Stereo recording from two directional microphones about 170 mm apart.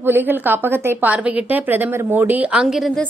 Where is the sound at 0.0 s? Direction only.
10° right (ahead or behind).